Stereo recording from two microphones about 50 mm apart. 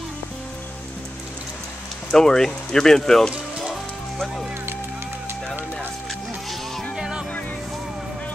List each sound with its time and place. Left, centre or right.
2.1 s speech: centre
7.0 s music: centre